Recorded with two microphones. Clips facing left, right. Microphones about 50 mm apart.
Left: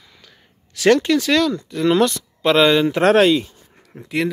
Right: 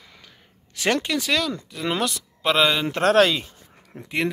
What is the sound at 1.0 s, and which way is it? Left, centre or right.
Speech, centre.